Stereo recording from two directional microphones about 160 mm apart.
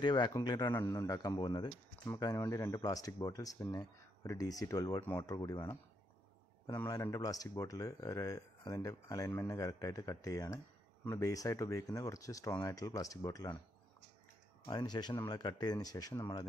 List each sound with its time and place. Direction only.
0.0 s speech: 25° left (ahead or behind)
14.7 s speech: 25° left (ahead or behind)